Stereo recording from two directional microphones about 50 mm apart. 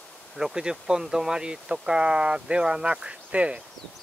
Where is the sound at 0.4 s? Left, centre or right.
Centre.